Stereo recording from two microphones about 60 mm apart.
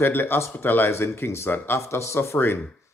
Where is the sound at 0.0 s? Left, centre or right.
Left.